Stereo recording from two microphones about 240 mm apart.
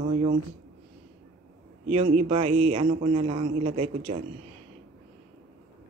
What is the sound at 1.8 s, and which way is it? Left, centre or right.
Speech, right.